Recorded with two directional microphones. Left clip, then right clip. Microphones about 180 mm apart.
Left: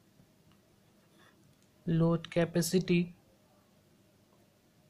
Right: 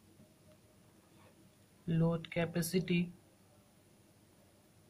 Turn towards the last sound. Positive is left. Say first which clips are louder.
# left 6 dB
turn(degrees=55)  # may be behind; listen again after turning